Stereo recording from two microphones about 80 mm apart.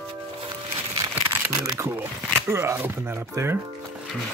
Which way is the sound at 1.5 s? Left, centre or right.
Right.